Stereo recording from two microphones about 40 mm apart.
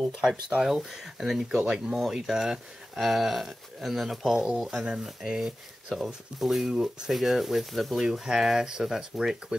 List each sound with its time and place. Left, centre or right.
0.2 s speech: centre
1.5 s speech: centre
4.6 s speech: centre
6.7 s speech: centre
7.1 s speech: centre